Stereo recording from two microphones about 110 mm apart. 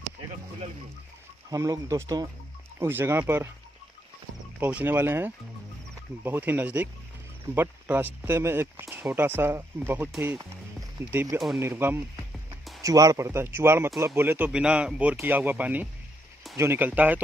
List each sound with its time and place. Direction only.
1.5 s speech: 30° right (ahead or behind)
2.8 s speech: 20° right (ahead or behind)
4.6 s speech: 15° right (ahead or behind)
11.3 s speech: centre (ahead or behind)
11.6 s speech: 20° right (ahead or behind)